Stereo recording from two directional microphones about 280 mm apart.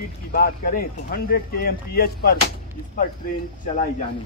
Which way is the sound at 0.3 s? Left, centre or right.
Left.